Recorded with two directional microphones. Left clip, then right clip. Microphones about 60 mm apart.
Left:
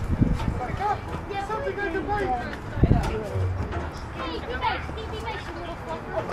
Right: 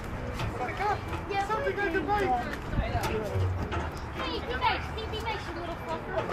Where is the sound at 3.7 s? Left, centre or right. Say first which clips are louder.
Left 1 dB; right.